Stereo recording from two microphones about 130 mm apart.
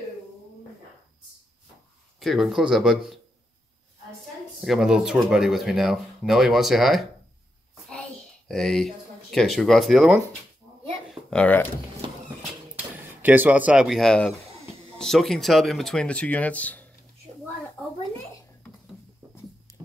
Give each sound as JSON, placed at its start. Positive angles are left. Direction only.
{"t": 2.1, "sound": "speech", "side_deg": 0}
{"t": 4.6, "sound": "speech", "side_deg": -5}
{"t": 7.9, "sound": "a sound", "side_deg": 5}
{"t": 11.2, "sound": "speech", "side_deg": 10}
{"t": 12.0, "sound": "a sound", "side_deg": -40}
{"t": 12.7, "sound": "speech", "side_deg": -15}